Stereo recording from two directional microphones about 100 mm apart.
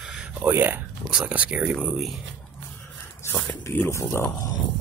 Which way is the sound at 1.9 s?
Centre (ahead or behind).